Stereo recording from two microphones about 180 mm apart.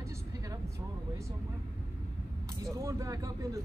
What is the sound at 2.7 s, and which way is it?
Speech, 20° right (ahead or behind).